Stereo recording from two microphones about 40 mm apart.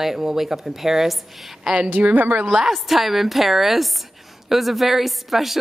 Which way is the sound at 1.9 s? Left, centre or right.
Right.